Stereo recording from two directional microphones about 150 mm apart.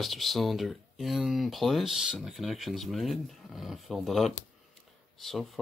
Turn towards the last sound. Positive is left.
turn(degrees=0)  # may be behind; listen again after turning